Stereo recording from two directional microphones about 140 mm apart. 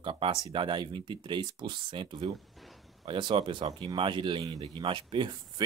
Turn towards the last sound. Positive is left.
turn(degrees=-35)  # may be behind; listen again after turning